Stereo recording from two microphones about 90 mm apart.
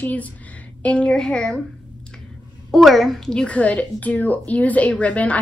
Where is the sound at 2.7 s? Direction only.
Centre (ahead or behind).